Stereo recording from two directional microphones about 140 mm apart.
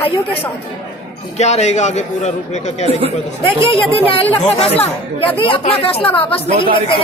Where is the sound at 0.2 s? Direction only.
45° left (ahead or behind).